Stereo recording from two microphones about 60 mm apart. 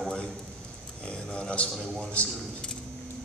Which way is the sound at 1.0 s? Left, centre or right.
Centre.